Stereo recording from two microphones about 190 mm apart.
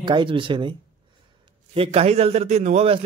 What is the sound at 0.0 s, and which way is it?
A man's voice, 25° right (ahead or behind).